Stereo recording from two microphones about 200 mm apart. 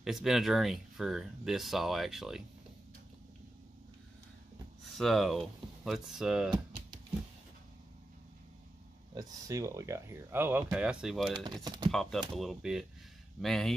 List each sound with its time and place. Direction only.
0.0 s speech: centre (ahead or behind)
4.8 s speech: centre (ahead or behind)
9.1 s speech: 15° right (ahead or behind); by 11.4 s centre (ahead or behind)
11.4 s speech: 20° right (ahead or behind)
11.9 s speech: centre (ahead or behind)